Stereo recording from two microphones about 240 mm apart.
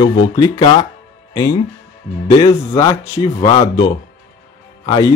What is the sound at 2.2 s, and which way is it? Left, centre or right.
Speech, centre.